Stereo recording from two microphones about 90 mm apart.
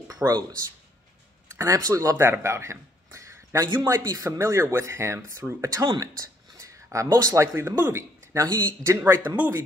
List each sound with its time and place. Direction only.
0.2 s a man's voice: 25° right (ahead or behind)
1.5 s speech: 35° right (ahead or behind)
9.0 s a man's voice: 20° right (ahead or behind)